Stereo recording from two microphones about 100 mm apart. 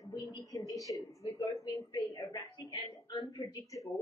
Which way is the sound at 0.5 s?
35° left (ahead or behind).